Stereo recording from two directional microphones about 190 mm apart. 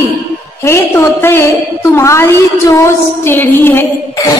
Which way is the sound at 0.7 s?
10° left (ahead or behind).